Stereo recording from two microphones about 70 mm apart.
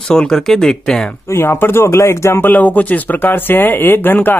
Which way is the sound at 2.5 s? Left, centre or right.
Left.